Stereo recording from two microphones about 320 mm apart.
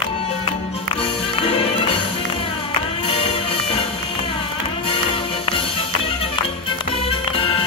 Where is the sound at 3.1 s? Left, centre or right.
Centre.